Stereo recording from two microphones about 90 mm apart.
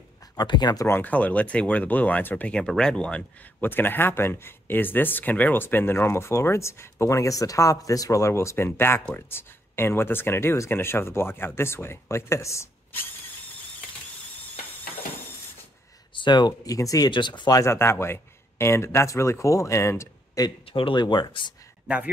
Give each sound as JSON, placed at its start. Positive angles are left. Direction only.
{"t": 0.4, "sound": "speech", "side_deg": 55}
{"t": 0.8, "sound": "speech", "side_deg": 20}
{"t": 3.6, "sound": "speech", "side_deg": 25}
{"t": 16.1, "sound": "speech", "side_deg": 65}
{"t": 17.1, "sound": "speech", "side_deg": 60}
{"t": 17.5, "sound": "speech", "side_deg": 35}
{"t": 20.6, "sound": "speech", "side_deg": 80}
{"t": 21.0, "sound": "speech", "side_deg": 60}
{"t": 21.8, "sound": "speech", "side_deg": -15}